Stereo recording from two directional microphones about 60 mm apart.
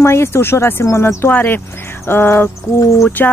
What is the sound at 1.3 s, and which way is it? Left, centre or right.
Speech, left.